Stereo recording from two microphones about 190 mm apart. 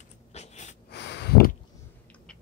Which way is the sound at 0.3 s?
35° left (ahead or behind).